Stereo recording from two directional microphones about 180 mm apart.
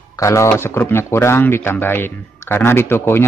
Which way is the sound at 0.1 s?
15° left (ahead or behind).